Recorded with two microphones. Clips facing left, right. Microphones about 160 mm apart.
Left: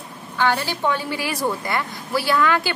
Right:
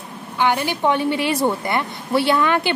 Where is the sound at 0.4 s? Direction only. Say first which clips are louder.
Right 2 dB; 15° right (ahead or behind).